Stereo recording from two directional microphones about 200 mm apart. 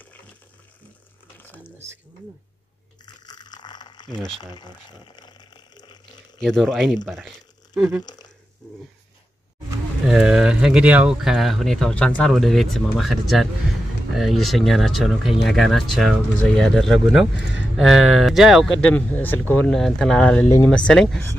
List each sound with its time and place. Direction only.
1.4 s squish: 10° left (ahead or behind)
3.3 s a sound: 20° left (ahead or behind)
4.4 s speech: 20° left (ahead or behind)
5.2 s a sound: 20° left (ahead or behind)
6.4 s speech: centre (ahead or behind)
8.0 s speech: 20° left (ahead or behind)
10.0 s speech: 5° right (ahead or behind)